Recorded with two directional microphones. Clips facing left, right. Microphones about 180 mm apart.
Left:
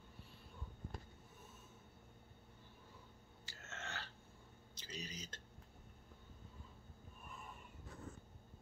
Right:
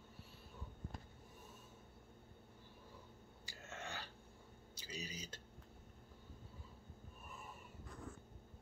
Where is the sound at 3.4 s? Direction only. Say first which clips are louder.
Right 2 dB; 15° right (ahead or behind).